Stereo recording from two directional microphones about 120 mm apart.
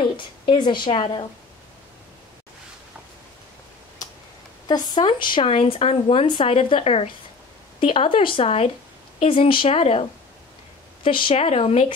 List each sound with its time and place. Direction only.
0.0 s a woman's voice: 40° left (ahead or behind)
4.6 s speech: 35° left (ahead or behind); by 10.0 s 60° left (ahead or behind)
11.1 s speech: 45° left (ahead or behind)